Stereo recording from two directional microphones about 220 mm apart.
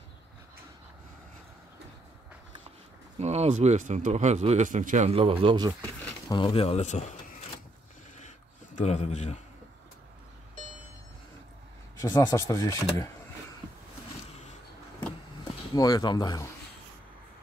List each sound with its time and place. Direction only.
3.2 s speech: 30° right (ahead or behind)
6.2 s speech: 20° left (ahead or behind)
8.7 s speech: 30° left (ahead or behind)
12.0 s speech: 15° left (ahead or behind)
15.7 s speech: 15° left (ahead or behind)